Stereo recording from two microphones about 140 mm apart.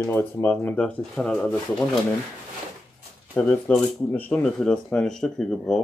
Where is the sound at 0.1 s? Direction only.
15° left (ahead or behind).